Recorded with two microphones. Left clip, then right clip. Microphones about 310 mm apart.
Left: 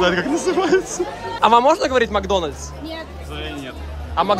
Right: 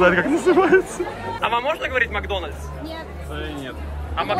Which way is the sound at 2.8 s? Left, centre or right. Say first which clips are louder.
Left 2 dB; centre.